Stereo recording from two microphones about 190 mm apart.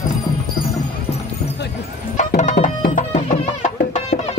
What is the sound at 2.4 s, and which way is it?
Tabla, 40° left (ahead or behind).